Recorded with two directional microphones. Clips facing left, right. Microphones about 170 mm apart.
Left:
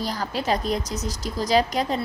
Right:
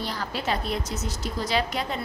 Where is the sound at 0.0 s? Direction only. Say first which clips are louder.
Left 3 dB; 40° left (ahead or behind).